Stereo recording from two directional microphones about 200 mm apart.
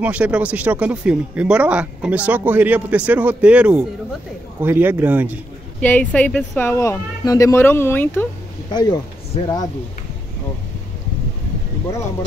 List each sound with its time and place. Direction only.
0.0 s speech: 5° right (ahead or behind)
5.8 s speech: 10° left (ahead or behind)